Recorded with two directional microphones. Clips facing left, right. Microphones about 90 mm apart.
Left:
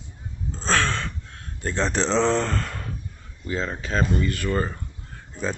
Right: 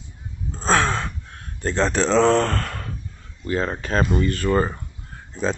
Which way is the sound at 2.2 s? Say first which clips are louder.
Right 4 dB; 55° right (ahead or behind).